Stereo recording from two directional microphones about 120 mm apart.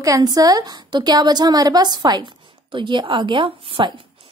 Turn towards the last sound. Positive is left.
turn(degrees=-45)  # may be behind; listen again after turning